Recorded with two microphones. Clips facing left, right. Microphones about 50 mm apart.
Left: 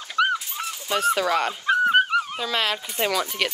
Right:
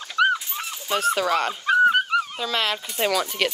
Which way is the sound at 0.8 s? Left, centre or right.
Centre.